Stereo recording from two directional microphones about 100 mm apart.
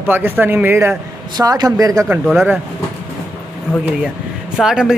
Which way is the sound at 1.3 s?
40° right (ahead or behind).